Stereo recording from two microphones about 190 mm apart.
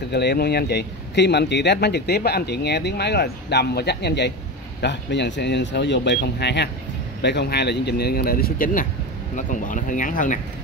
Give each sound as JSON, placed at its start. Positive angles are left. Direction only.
{"t": 0.1, "sound": "speech", "side_deg": 60}